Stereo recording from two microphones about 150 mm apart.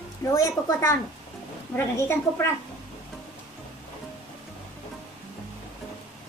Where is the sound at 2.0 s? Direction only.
15° left (ahead or behind).